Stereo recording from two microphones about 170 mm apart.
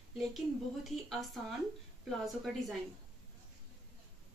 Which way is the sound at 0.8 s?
Centre (ahead or behind).